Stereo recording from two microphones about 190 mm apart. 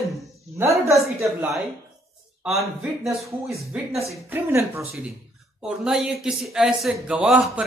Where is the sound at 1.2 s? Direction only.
15° right (ahead or behind).